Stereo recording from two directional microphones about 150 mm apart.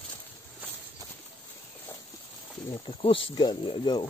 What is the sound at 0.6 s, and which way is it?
Walk, 10° right (ahead or behind).